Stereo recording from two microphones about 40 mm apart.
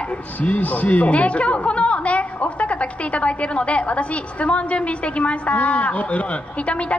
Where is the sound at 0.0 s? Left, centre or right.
Left.